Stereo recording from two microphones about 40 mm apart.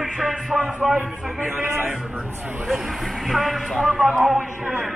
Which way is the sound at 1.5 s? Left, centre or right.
Right.